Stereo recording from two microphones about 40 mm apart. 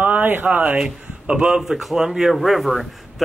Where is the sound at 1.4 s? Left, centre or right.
Centre.